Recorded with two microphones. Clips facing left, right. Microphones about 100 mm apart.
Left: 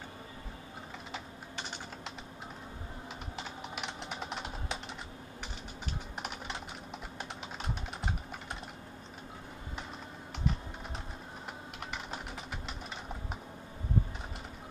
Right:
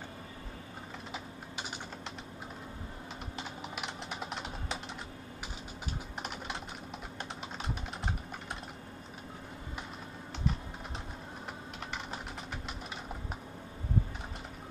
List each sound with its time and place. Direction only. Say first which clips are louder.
3.3 s typing: even; centre (ahead or behind)
6.2 s typing: right 1 dB; centre (ahead or behind)